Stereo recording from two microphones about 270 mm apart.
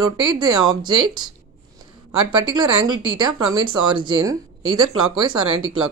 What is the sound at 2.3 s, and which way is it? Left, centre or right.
Speech, centre.